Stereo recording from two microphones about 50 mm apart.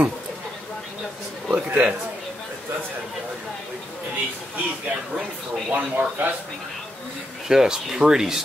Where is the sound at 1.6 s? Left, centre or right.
Right.